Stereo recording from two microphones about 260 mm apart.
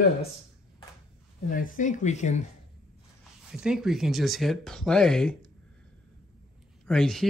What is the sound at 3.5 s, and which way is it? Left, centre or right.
Speech, centre.